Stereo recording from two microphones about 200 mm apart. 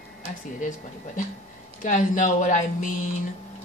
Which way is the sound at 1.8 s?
40° left (ahead or behind).